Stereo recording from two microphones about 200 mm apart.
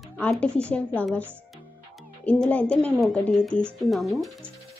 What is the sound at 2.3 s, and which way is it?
Speech, 5° left (ahead or behind).